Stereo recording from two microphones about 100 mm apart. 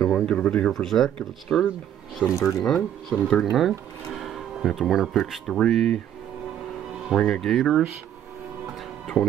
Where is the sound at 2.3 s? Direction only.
30° left (ahead or behind).